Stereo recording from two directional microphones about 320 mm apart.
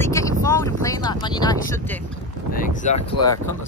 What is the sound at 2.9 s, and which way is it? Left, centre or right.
Speech, centre.